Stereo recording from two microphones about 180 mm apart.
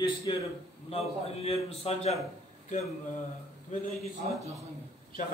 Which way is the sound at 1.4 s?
35° left (ahead or behind).